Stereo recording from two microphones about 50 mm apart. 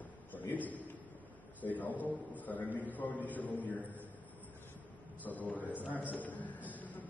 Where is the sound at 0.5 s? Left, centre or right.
Left.